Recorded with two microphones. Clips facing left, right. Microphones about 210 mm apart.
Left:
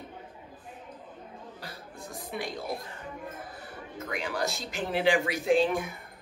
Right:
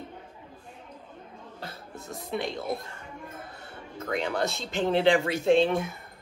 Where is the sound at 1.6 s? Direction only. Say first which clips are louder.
Right 5 dB; 25° right (ahead or behind).